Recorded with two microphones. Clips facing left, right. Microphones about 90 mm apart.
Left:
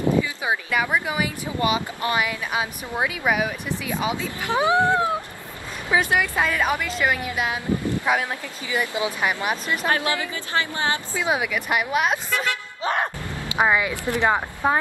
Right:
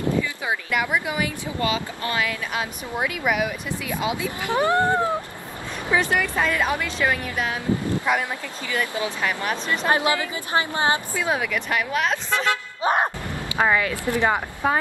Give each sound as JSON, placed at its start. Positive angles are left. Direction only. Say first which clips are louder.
{"t": 0.9, "sound": "speech", "louder": "left 1 dB", "side_deg": 15}
{"t": 4.5, "sound": "speech", "louder": "left 1 dB", "side_deg": 15}
{"t": 9.8, "sound": "a woman's voice", "louder": "right 3 dB", "side_deg": -20}
{"t": 11.1, "sound": "speech", "louder": "even", "side_deg": 10}
{"t": 12.4, "sound": "a sound", "louder": "right 3 dB", "side_deg": -25}
{"t": 13.3, "sound": "speech", "louder": "left 3 dB", "side_deg": 15}